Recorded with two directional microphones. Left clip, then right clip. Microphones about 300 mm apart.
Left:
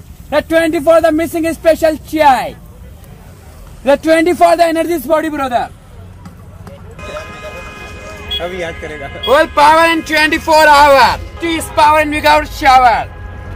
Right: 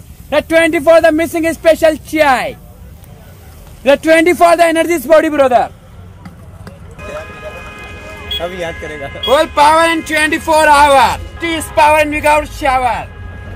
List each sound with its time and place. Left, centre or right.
0.3 s a man's voice: centre
3.8 s a man's voice: centre
8.4 s speech: right
9.3 s speech: centre